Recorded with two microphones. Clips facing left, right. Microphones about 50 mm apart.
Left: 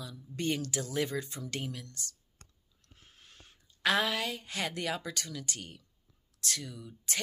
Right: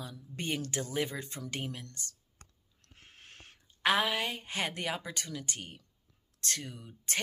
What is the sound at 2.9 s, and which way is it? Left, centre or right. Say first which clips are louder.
Owl: right 4 dB; right.